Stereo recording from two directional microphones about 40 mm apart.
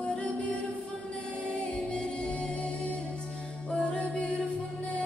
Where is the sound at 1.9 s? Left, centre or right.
Left.